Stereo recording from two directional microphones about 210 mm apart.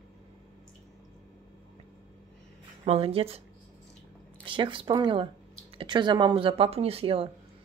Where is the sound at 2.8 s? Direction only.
30° right (ahead or behind).